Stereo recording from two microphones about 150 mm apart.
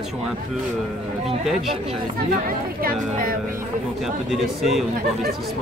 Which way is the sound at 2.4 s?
70° right (ahead or behind).